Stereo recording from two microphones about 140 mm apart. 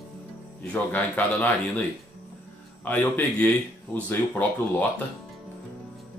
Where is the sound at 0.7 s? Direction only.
10° left (ahead or behind).